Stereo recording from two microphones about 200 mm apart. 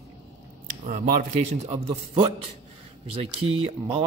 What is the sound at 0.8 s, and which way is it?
Speech, 40° right (ahead or behind).